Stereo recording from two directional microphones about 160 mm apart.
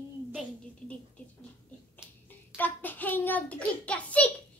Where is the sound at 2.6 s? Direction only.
10° left (ahead or behind).